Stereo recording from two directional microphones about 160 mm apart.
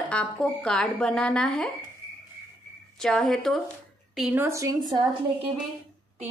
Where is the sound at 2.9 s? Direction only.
5° left (ahead or behind).